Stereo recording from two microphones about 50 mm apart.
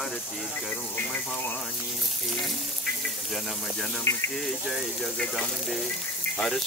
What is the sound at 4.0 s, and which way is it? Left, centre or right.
Speech, left.